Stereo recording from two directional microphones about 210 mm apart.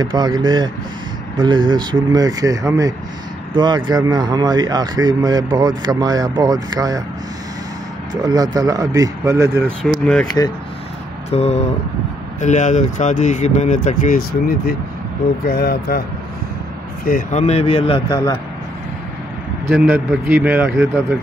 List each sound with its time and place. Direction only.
0.0 s speech: 20° right (ahead or behind)
1.4 s speech: 20° right (ahead or behind)
8.2 s speech: 15° right (ahead or behind)
9.7 s speech: 5° left (ahead or behind)
11.2 s speech: 30° left (ahead or behind); by 16.0 s 50° left (ahead or behind)
17.0 s speech: 35° left (ahead or behind); by 18.4 s 20° left (ahead or behind)
19.7 s speech: 10° right (ahead or behind)